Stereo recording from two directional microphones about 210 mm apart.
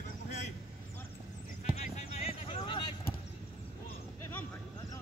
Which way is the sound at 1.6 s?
30° left (ahead or behind).